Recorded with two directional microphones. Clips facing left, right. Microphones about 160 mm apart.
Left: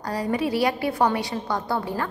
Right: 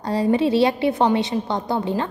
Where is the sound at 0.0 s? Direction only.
25° right (ahead or behind).